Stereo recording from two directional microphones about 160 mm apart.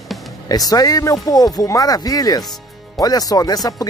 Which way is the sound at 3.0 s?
25° left (ahead or behind).